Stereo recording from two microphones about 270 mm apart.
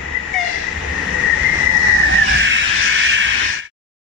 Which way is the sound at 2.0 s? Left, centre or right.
Right.